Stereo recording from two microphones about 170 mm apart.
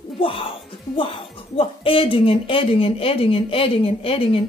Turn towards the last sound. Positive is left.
turn(degrees=35)  # may be behind; listen again after turning